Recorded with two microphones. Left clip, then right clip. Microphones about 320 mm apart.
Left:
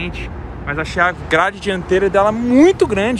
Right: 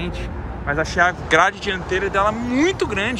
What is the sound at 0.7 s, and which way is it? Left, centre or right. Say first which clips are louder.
Speech: left 1 dB; centre.